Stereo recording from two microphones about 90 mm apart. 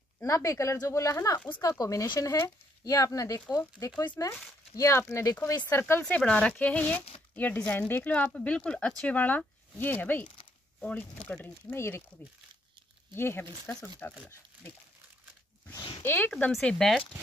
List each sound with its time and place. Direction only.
0.2 s speech: 35° left (ahead or behind)
5.6 s speech: 25° left (ahead or behind)
6.0 s speech: 10° left (ahead or behind); by 12.0 s 30° left (ahead or behind)
13.1 s speech: 25° left (ahead or behind)
16.0 s speech: 25° left (ahead or behind)
16.6 s speech: 5° left (ahead or behind)